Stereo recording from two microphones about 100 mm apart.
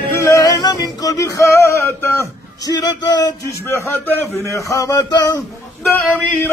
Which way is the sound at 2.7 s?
45° left (ahead or behind).